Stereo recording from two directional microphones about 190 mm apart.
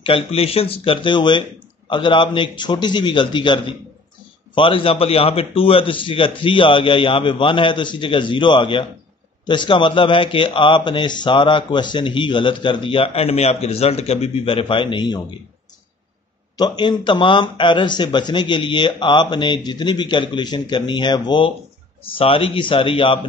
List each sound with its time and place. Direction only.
0.0 s a man's voice: 30° left (ahead or behind)
16.5 s a man's voice: 25° left (ahead or behind)